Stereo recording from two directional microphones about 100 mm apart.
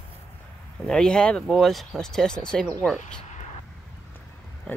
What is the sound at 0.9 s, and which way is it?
Speech, 5° left (ahead or behind).